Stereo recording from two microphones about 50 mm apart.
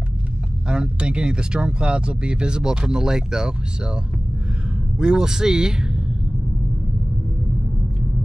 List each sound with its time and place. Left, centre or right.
0.7 s speech: centre